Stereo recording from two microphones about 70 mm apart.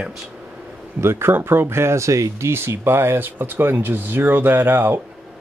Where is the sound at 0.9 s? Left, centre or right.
Right.